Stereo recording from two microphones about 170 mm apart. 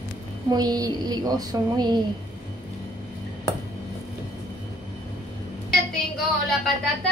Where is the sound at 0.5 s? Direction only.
25° right (ahead or behind).